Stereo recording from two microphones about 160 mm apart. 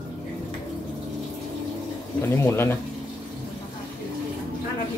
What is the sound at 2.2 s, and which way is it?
Speech, 15° left (ahead or behind).